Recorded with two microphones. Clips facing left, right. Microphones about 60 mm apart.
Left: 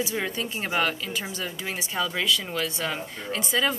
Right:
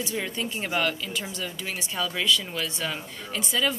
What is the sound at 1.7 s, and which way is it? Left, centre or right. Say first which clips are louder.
Speech: left 2 dB; left.